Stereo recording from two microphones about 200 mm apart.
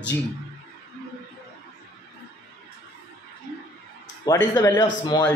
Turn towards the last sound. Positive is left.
turn(degrees=20)  # may be behind; listen again after turning